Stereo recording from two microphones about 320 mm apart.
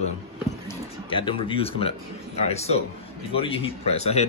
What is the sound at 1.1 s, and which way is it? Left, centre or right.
Speech, centre.